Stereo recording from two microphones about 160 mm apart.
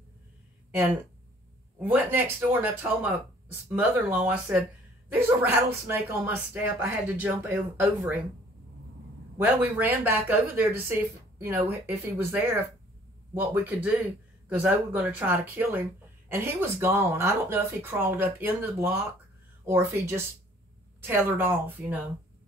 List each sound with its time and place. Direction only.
0.7 s speech: 10° right (ahead or behind)
9.4 s speech: 10° right (ahead or behind)